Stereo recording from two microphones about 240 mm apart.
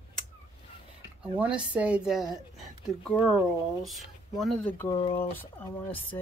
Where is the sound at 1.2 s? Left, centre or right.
Centre.